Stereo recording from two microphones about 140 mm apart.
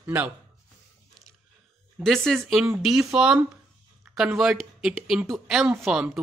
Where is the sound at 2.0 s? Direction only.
Centre (ahead or behind).